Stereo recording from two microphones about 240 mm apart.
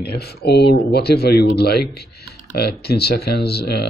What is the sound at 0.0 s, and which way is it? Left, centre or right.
Speech, left.